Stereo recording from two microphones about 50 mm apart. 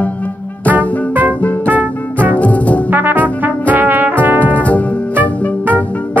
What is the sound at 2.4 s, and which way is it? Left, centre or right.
Music, left.